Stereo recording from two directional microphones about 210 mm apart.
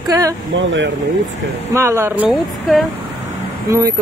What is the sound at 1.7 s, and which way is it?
Speech, 15° right (ahead or behind).